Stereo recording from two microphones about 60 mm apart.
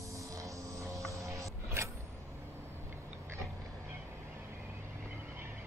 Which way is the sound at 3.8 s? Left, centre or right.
Right.